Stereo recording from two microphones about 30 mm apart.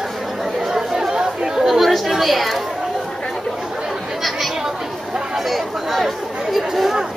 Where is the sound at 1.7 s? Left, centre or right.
Centre.